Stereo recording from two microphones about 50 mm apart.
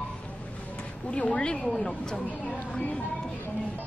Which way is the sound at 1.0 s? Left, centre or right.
Left.